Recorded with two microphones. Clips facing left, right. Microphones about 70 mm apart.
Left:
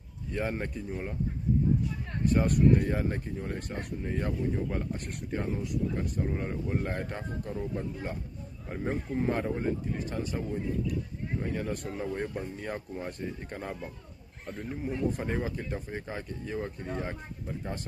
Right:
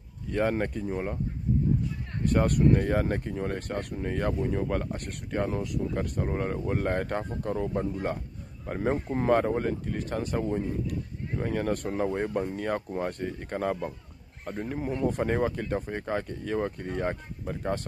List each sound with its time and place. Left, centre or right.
0.3 s speech: right
2.2 s speech: right
9.2 s speech: right
11.9 s speech: right
12.4 s speech: right